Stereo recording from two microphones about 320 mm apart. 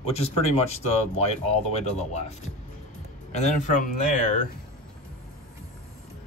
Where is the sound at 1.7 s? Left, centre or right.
Centre.